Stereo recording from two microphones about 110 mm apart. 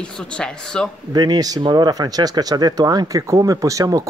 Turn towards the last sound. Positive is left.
turn(degrees=-30)  # may be behind; listen again after turning